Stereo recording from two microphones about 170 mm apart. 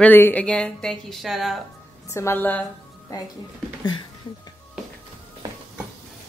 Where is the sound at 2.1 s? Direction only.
15° left (ahead or behind).